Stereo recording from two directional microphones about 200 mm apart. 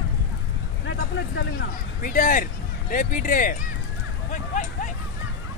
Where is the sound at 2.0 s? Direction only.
40° left (ahead or behind).